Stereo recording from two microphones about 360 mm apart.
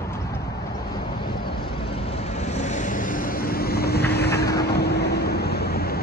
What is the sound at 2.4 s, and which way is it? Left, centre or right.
Vehicle, centre.